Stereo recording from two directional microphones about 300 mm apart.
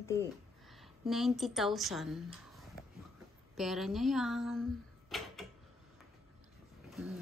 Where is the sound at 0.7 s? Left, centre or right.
Centre.